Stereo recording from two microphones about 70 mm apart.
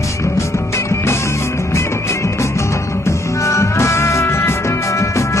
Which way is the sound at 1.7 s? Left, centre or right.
Left.